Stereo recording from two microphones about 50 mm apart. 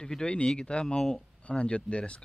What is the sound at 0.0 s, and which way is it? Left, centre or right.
Speech, centre.